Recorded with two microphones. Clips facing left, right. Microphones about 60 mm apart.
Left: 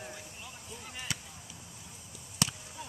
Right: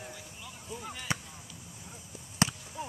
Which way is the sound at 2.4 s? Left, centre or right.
Right.